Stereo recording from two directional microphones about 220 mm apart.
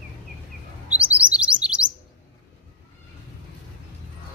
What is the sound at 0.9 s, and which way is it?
Chirp, 5° right (ahead or behind).